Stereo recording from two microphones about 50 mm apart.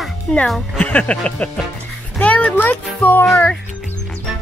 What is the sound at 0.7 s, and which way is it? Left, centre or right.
A child's voice, left.